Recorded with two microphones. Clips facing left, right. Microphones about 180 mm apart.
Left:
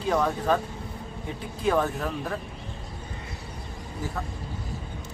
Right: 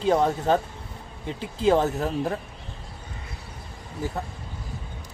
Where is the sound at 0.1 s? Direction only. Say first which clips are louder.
Right 3 dB; 30° right (ahead or behind).